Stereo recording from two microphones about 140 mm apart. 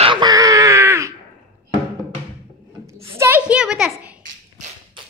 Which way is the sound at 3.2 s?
10° right (ahead or behind).